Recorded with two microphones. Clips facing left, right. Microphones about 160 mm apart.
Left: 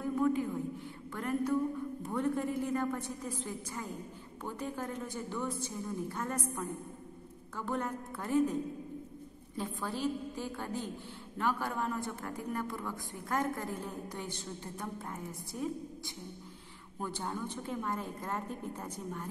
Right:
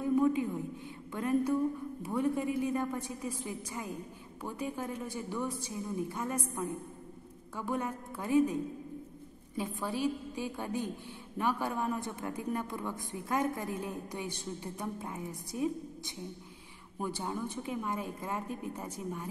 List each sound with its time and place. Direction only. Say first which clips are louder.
0.0 s a sound: right 3 dB; 20° right (ahead or behind)
1.1 s a man's voice: right 2 dB; 15° right (ahead or behind)
9.6 s a man's voice: right 2 dB; 10° right (ahead or behind)
17.0 s a man's voice: right 2 dB; 10° right (ahead or behind)